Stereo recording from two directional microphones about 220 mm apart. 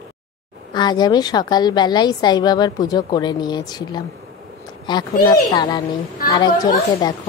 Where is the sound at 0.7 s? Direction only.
20° left (ahead or behind).